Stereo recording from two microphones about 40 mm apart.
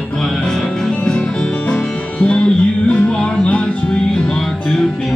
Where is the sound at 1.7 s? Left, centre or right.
Left.